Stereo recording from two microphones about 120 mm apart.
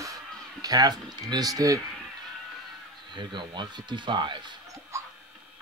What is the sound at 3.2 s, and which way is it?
Speech, 40° right (ahead or behind).